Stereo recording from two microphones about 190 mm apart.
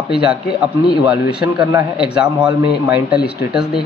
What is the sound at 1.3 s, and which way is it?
A man's voice, 5° right (ahead or behind).